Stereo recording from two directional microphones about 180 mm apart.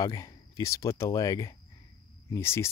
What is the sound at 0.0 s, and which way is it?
Speech, 20° left (ahead or behind).